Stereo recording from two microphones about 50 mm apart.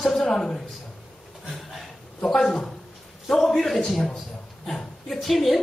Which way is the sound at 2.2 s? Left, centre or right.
Centre.